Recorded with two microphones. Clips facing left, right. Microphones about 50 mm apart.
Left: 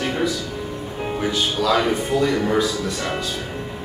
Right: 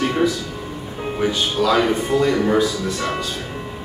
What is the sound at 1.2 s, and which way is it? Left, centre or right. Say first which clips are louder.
A man's voice: right 3 dB; centre.